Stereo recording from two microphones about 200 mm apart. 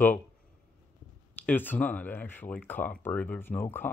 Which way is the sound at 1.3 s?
10° left (ahead or behind).